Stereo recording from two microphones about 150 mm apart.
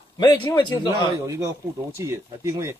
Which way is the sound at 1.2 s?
20° right (ahead or behind).